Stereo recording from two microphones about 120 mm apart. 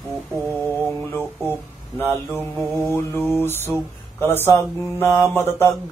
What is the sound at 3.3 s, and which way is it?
Mantra, 20° left (ahead or behind).